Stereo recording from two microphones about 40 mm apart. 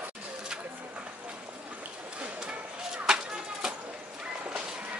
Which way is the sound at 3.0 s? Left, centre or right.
Centre.